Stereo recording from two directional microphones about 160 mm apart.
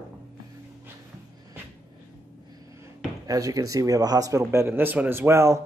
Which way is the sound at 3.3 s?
20° right (ahead or behind).